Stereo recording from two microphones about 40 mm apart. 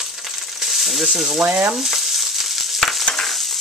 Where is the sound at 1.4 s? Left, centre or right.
Right.